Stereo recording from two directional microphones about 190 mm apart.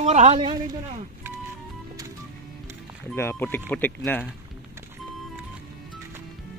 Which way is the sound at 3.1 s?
10° left (ahead or behind).